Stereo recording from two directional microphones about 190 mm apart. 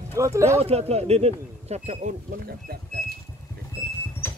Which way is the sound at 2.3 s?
50° right (ahead or behind).